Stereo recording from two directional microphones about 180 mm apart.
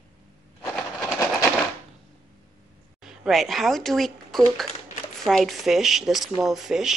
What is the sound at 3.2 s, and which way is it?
Speech, centre (ahead or behind).